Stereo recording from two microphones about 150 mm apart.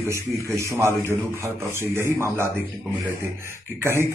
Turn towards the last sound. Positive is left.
turn(degrees=-15)  # may be behind; listen again after turning